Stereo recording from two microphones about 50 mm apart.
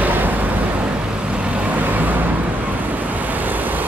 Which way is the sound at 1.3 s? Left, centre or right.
Right.